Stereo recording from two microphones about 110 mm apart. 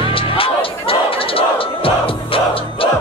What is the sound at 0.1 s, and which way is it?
Music, 55° left (ahead or behind).